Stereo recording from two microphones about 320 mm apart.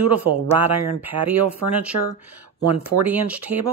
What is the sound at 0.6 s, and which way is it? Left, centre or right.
Speech, centre.